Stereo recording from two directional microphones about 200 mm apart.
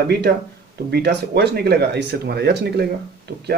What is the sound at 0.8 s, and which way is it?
Speech, 55° right (ahead or behind).